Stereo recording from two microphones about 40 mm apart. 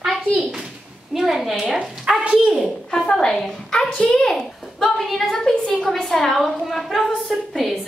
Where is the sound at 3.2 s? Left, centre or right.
Centre.